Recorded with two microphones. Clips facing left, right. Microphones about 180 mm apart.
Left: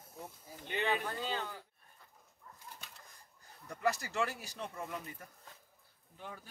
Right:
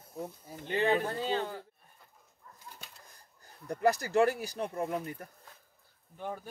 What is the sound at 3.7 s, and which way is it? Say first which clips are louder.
Speech: right 8 dB; 40° right (ahead or behind).